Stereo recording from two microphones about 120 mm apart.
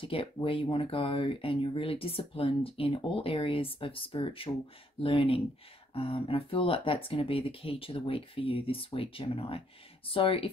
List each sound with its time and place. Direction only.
0.0 s speech: 50° left (ahead or behind)